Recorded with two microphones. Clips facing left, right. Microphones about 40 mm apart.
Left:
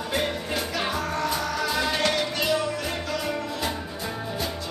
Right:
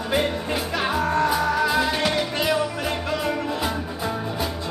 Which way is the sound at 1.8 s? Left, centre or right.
Centre.